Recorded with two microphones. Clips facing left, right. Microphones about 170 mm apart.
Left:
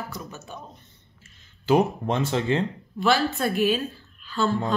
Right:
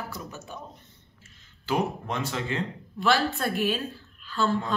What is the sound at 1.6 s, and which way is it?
Speech, 25° left (ahead or behind).